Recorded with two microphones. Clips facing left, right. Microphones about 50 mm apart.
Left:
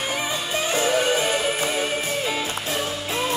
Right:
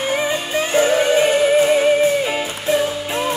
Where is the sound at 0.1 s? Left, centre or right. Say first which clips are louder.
Right 6 dB; right.